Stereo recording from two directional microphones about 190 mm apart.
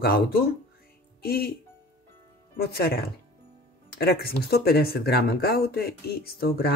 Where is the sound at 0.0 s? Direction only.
55° left (ahead or behind).